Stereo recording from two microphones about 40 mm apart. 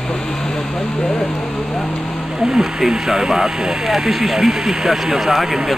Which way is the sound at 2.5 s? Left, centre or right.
Centre.